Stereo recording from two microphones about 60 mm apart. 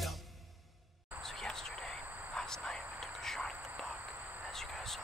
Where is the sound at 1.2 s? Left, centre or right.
Centre.